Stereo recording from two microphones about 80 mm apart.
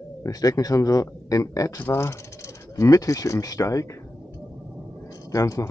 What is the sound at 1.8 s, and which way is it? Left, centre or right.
Speech, left.